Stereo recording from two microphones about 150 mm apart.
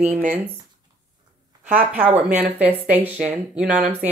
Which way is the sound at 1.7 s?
10° right (ahead or behind).